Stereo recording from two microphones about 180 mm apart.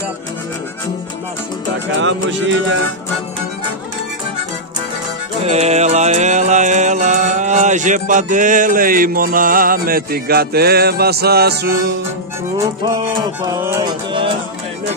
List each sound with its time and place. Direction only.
2.0 s speech: 90° right
5.4 s music: 35° right (ahead or behind); by 11.6 s 60° right (ahead or behind)
13.5 s music: 15° right (ahead or behind)